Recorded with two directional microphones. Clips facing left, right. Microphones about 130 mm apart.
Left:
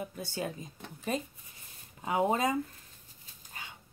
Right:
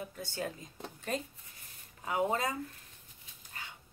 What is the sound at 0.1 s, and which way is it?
Speech, 10° left (ahead or behind).